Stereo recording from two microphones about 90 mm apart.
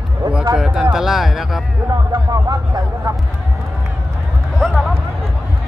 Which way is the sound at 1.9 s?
40° right (ahead or behind).